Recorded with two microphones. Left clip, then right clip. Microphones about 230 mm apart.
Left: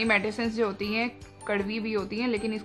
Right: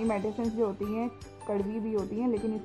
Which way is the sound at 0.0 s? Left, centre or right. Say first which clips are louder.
Left 5 dB; left.